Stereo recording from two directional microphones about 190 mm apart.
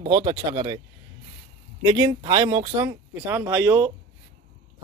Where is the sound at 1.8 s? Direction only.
20° right (ahead or behind).